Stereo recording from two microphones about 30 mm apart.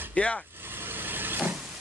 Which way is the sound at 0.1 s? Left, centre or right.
Left.